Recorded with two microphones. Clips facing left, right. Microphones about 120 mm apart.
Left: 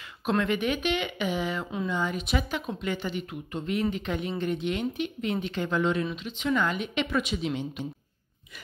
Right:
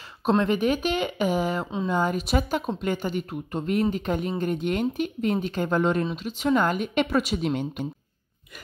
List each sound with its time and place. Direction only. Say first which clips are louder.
0.2 s speech: right 4 dB; 30° right (ahead or behind); by 7.9 s 50° right (ahead or behind)